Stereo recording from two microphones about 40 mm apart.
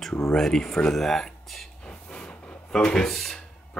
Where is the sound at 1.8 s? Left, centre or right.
Left.